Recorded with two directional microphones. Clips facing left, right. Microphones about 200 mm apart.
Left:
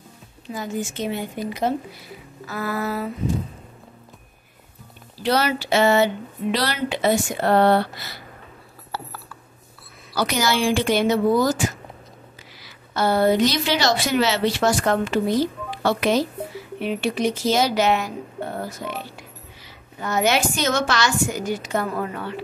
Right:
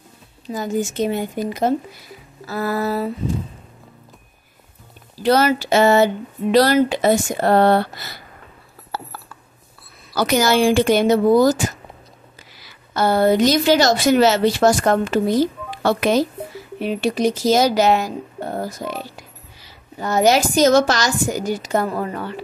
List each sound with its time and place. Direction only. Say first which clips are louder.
0.5 s a woman's voice: right 5 dB; 40° right (ahead or behind)
5.2 s speech: right 5 dB; 45° right (ahead or behind)
10.1 s a woman's voice: right 5 dB; 50° right (ahead or behind)
12.9 s speech: right 3 dB; 45° right (ahead or behind)
16.8 s a woman's voice: right 3 dB; 35° right (ahead or behind)